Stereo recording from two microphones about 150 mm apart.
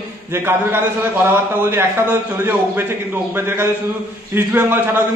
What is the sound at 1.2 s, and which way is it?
Speech, 15° right (ahead or behind).